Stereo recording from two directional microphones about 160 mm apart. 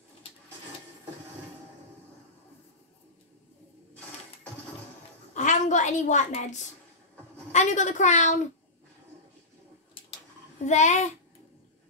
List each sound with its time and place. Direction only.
5.3 s a woman's voice: 50° left (ahead or behind)
10.6 s a woman's voice: 45° left (ahead or behind)